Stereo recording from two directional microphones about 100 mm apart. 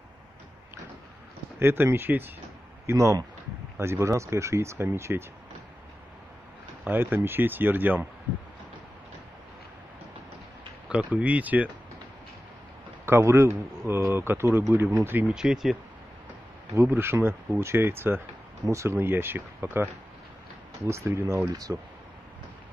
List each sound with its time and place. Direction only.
1.6 s speech: 25° right (ahead or behind)
2.9 s speech: 30° right (ahead or behind)
6.8 s speech: 20° right (ahead or behind)
10.9 s speech: 10° right (ahead or behind)
13.0 s speech: 25° right (ahead or behind)
15.3 s speech: 5° right (ahead or behind)
16.7 s speech: 25° right (ahead or behind)